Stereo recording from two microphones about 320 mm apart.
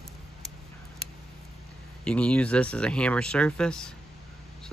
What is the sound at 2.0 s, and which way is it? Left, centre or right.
Speech, centre.